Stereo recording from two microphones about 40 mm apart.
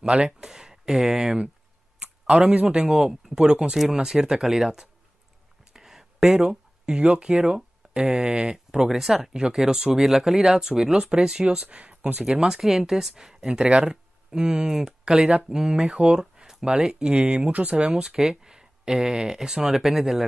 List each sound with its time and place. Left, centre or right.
0.1 s speech: centre
2.9 s speech: centre
4.0 s speech: centre
5.7 s a sound: centre
7.9 s speech: right
8.2 s speech: centre
11.6 s speech: right
12.3 s speech: centre
18.0 s speech: centre